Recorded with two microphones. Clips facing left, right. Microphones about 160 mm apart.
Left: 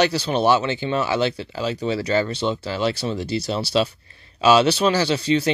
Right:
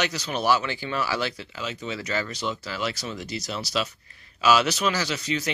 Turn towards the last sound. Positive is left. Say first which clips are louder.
# left 8 dB
turn(degrees=30)  # may be behind; listen again after turning